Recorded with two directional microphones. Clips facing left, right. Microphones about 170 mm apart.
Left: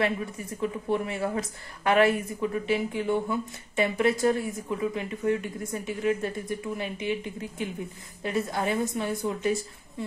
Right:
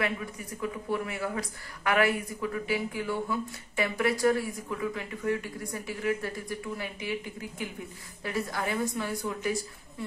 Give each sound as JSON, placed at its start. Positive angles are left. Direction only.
{"t": 0.6, "sound": "speech", "side_deg": 25}